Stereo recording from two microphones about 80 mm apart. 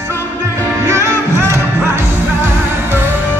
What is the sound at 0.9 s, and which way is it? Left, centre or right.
Music, right.